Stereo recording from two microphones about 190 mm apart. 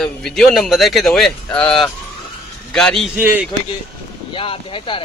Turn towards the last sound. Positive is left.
turn(degrees=25)  # may be behind; listen again after turning